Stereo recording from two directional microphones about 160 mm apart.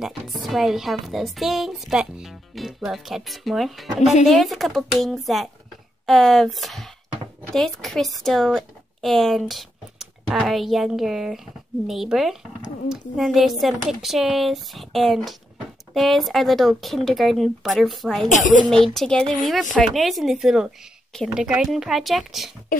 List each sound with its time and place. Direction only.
0.0 s speech: centre (ahead or behind)
18.3 s a child's voice: 55° left (ahead or behind)
18.7 s speech: 5° left (ahead or behind)